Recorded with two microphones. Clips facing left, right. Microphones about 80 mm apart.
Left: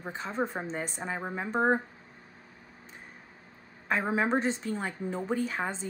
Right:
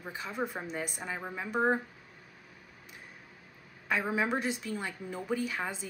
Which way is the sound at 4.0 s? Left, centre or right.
Left.